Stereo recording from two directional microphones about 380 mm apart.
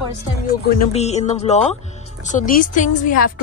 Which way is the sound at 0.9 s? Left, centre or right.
Centre.